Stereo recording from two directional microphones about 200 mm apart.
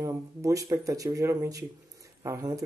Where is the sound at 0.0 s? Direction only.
15° right (ahead or behind).